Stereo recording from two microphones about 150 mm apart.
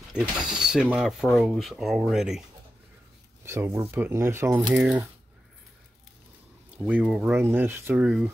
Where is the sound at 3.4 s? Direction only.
15° right (ahead or behind).